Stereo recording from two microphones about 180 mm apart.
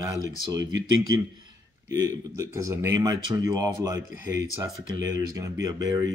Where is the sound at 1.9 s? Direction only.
15° right (ahead or behind).